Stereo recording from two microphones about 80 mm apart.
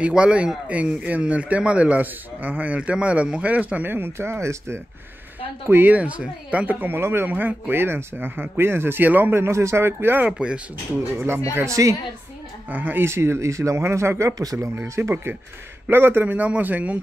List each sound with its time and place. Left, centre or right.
0.0 s speech: centre; by 4.7 s right
5.7 s speech: right
10.2 s speech: centre
11.1 s speech: right
11.6 s speech: right
12.6 s speech: right
14.8 s speech: right